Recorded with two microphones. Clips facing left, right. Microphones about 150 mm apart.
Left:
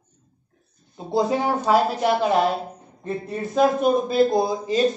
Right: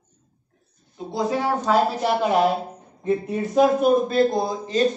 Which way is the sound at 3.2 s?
5° right (ahead or behind).